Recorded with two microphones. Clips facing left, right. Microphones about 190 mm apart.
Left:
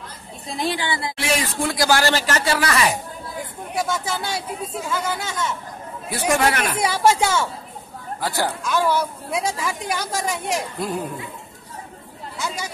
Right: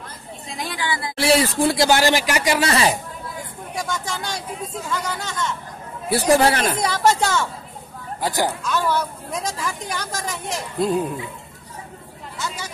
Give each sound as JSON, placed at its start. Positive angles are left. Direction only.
{"t": 0.5, "sound": "a woman's voice", "side_deg": 30}
{"t": 1.1, "sound": "speech", "side_deg": -35}
{"t": 2.6, "sound": "speech", "side_deg": -30}
{"t": 3.7, "sound": "speech", "side_deg": 5}
{"t": 6.0, "sound": "speech", "side_deg": -35}
{"t": 6.8, "sound": "speech", "side_deg": 10}
{"t": 8.2, "sound": "speech", "side_deg": -20}
{"t": 8.6, "sound": "speech", "side_deg": 10}
{"t": 12.4, "sound": "a sound", "side_deg": 10}